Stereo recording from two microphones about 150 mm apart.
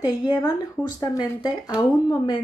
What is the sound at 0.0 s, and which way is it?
A woman's voice, 25° left (ahead or behind).